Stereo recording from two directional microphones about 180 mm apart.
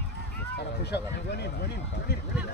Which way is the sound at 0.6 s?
65° left (ahead or behind).